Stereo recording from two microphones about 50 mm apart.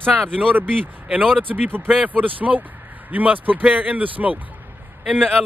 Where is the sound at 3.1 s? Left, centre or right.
Right.